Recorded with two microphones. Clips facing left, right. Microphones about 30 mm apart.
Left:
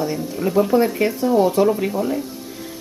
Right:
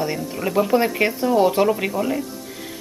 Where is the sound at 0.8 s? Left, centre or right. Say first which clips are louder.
Left 1 dB; right.